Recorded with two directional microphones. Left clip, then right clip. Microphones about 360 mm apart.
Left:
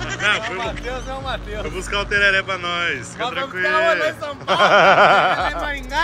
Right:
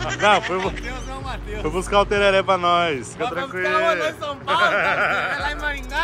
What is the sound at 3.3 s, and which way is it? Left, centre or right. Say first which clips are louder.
Speech: left 3 dB; centre.